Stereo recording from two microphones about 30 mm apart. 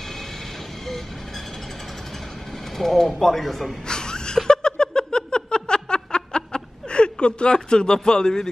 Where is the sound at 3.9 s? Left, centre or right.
Left.